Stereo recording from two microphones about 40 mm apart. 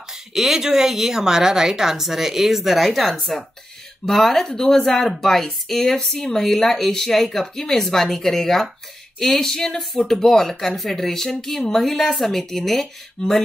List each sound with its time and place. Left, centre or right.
0.3 s speech: centre
4.1 s speech: centre
13.2 s a sound: left